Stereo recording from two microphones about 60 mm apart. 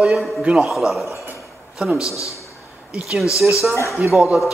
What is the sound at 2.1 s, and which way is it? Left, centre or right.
Speech, left.